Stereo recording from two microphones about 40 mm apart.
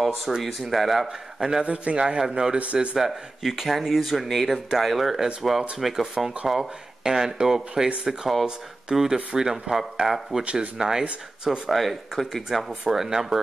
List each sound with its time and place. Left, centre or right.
0.0 s speech: centre
1.6 s a man's voice: right
3.0 s speech: centre
4.3 s speech: centre
10.4 s speech: right
10.8 s speech: centre
11.7 s speech: centre